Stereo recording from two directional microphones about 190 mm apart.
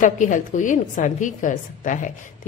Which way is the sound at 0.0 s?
40° left (ahead or behind).